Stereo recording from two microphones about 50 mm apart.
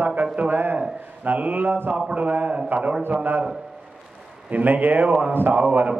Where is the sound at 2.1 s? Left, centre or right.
Right.